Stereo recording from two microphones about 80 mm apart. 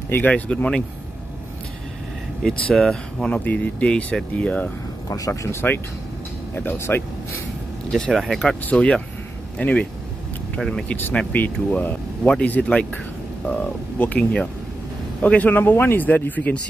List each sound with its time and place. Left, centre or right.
0.1 s speech: centre
2.4 s speech: centre
3.3 s speech: centre
5.1 s speech: left
6.5 s speech: left
7.9 s speech: centre
11.1 s speech: centre